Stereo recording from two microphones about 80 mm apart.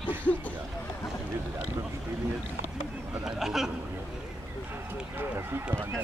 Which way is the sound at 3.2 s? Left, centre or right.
Centre.